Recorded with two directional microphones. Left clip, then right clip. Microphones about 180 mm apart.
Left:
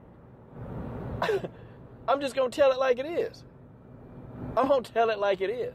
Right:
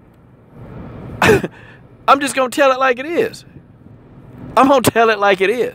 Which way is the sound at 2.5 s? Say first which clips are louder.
Right 9 dB; 90° right.